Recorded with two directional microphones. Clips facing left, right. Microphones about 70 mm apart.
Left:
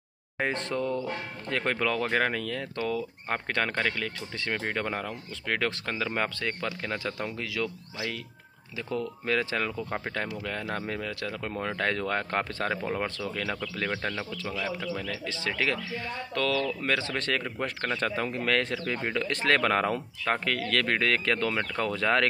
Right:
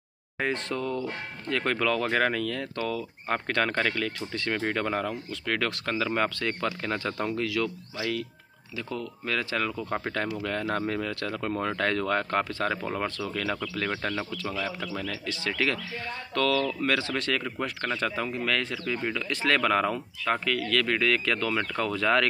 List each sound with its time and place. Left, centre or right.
0.4 s speech: left
3.7 s speech: centre
5.5 s speech: centre
9.7 s speech: centre
15.2 s speech: left
18.0 s speech: left